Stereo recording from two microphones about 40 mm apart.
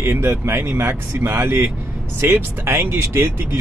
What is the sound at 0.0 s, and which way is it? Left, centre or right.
Speech, right.